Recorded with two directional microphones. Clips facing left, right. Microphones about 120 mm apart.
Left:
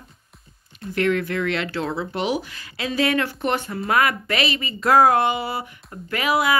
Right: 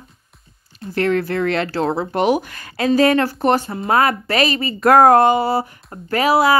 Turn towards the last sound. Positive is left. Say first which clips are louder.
# right 6 dB
turn(degrees=-35)  # may be behind; listen again after turning